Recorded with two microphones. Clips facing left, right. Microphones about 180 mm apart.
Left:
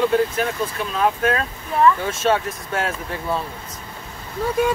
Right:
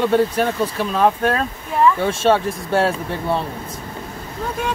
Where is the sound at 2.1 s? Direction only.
30° right (ahead or behind).